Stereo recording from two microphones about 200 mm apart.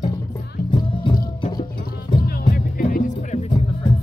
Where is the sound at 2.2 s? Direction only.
45° left (ahead or behind); by 3.9 s 30° left (ahead or behind).